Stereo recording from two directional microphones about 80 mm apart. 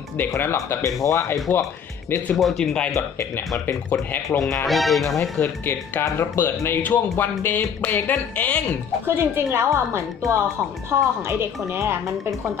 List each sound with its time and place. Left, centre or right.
0.4 s speech: left
2.3 s speech: centre
4.6 s speech: centre
5.4 s speech: left
9.0 s a woman's voice: right